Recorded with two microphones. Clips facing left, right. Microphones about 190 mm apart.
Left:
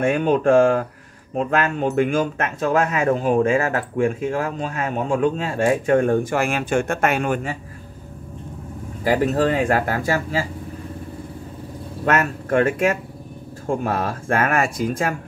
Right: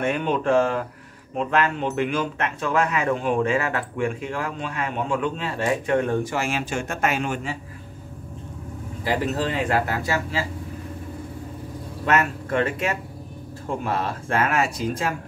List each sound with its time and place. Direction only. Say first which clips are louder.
0.0 s speech: left 5 dB; 45° left (ahead or behind)
9.0 s speech: left 6 dB; 45° left (ahead or behind)
12.1 s speech: left 3 dB; 50° left (ahead or behind)